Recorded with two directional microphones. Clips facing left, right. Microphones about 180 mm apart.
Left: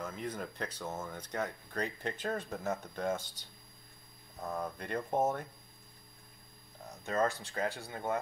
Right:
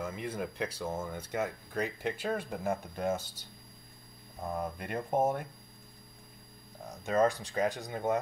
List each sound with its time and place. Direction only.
0.0 s speech: 10° right (ahead or behind)
4.6 s speech: 10° right (ahead or behind)
6.9 s speech: 15° right (ahead or behind)